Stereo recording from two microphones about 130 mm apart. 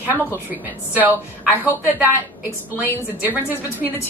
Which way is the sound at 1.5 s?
15° right (ahead or behind).